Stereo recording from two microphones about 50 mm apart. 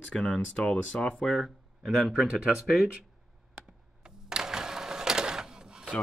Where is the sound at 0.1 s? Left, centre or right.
Centre.